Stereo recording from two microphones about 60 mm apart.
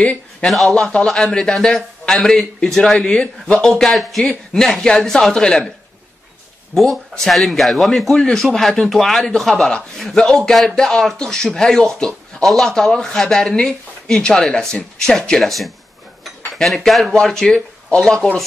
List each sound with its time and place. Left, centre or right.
0.0 s a man's voice: left
3.5 s a man's voice: centre
6.7 s a man's voice: centre